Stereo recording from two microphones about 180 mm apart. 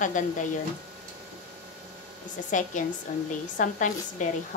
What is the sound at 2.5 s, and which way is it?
A woman's voice, 45° left (ahead or behind).